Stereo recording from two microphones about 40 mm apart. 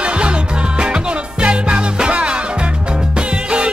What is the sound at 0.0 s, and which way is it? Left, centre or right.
Music, right.